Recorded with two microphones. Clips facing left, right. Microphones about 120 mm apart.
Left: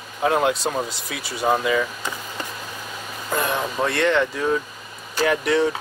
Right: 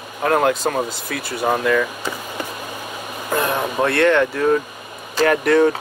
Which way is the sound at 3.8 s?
Centre (ahead or behind).